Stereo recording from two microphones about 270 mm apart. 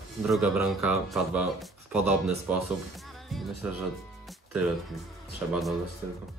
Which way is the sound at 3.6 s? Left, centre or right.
Centre.